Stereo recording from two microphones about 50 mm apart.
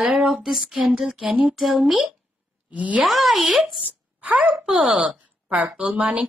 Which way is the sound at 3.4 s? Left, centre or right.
Centre.